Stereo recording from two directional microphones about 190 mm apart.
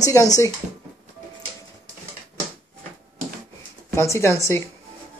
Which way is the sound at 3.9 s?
15° left (ahead or behind).